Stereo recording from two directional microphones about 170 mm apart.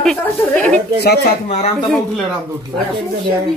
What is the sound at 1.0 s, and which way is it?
Speech, 70° left (ahead or behind).